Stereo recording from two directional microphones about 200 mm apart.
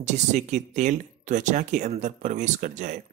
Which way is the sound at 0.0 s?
35° right (ahead or behind).